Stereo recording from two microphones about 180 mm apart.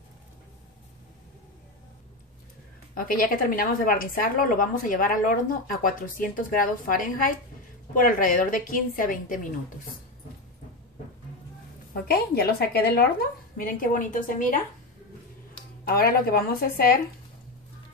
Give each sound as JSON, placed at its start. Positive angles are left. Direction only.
{"t": 2.9, "sound": "a woman's voice", "side_deg": 50}
{"t": 12.1, "sound": "a woman's voice", "side_deg": 60}
{"t": 15.9, "sound": "a woman's voice", "side_deg": 55}